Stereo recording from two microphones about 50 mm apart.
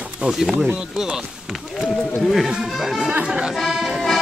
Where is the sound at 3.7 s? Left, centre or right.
Centre.